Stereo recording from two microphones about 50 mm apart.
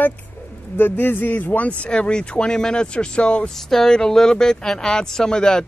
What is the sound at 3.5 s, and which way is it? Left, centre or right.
Speech, centre.